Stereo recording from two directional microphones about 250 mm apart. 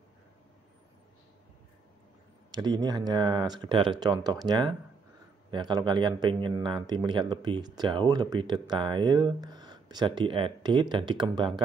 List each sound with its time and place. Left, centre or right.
2.5 s speech: centre